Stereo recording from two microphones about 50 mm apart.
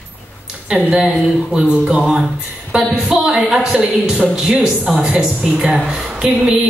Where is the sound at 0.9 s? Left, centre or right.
Centre.